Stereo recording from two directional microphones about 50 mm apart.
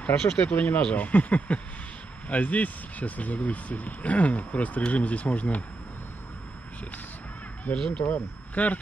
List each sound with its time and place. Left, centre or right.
0.0 s speech: centre
0.5 s speech: left
8.0 s speech: left